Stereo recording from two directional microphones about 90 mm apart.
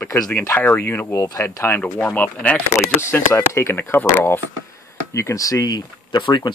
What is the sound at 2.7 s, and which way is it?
Speech, 30° left (ahead or behind).